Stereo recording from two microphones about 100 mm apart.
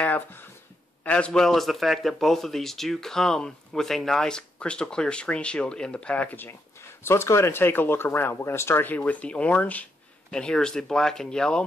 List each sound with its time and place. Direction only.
0.0 s a man's voice: 20° left (ahead or behind)